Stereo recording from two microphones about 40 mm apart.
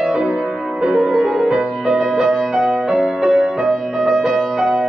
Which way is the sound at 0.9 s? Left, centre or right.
Centre.